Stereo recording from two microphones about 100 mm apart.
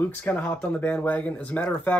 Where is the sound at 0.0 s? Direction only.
15° left (ahead or behind).